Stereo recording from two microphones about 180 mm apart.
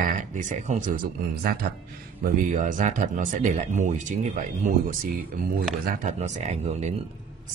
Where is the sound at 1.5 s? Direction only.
55° right (ahead or behind); by 6.9 s 35° right (ahead or behind).